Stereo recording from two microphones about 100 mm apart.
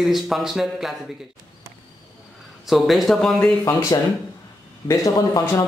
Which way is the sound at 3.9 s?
40° left (ahead or behind).